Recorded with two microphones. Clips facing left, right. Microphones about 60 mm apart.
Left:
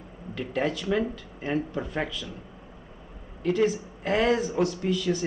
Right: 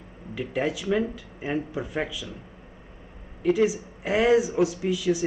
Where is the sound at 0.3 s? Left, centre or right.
Centre.